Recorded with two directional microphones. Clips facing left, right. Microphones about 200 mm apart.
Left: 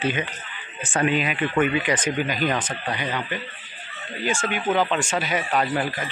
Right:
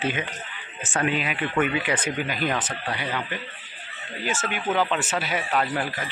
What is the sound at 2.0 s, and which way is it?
Speech, 40° left (ahead or behind).